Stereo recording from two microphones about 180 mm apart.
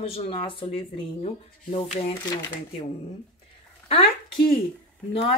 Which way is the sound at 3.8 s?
35° left (ahead or behind).